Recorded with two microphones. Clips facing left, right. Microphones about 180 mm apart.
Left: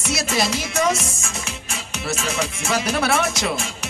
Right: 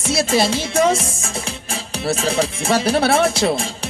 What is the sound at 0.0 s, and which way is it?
Music, 30° right (ahead or behind).